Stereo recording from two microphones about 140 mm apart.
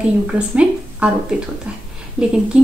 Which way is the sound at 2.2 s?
5° right (ahead or behind).